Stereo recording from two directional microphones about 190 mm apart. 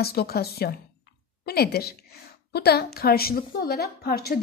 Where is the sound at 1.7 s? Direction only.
55° left (ahead or behind).